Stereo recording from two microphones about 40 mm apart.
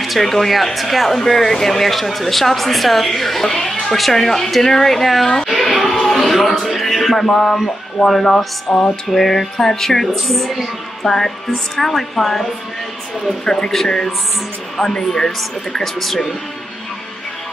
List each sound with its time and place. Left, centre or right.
0.0 s speech: centre
5.6 s music: centre
7.2 s speech: centre
8.6 s music: left
9.1 s speech: centre
13.5 s speech: centre
13.8 s music: left
14.8 s speech: centre
16.0 s speech: centre